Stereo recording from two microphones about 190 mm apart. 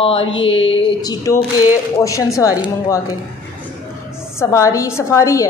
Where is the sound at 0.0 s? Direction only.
30° left (ahead or behind).